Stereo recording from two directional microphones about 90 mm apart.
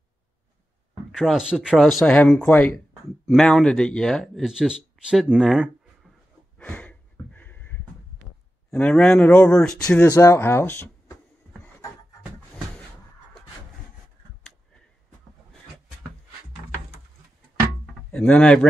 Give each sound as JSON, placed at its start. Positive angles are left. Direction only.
{"t": 1.1, "sound": "speech", "side_deg": -5}
{"t": 2.0, "sound": "speech", "side_deg": 10}
{"t": 3.3, "sound": "speech", "side_deg": 5}
{"t": 4.5, "sound": "speech", "side_deg": -10}
{"t": 6.6, "sound": "a sound", "side_deg": 15}
{"t": 8.6, "sound": "a man's voice", "side_deg": 5}
{"t": 10.1, "sound": "speech", "side_deg": 35}
{"t": 18.1, "sound": "speech", "side_deg": 15}